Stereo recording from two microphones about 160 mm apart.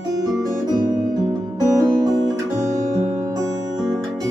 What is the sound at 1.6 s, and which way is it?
Music, 20° right (ahead or behind).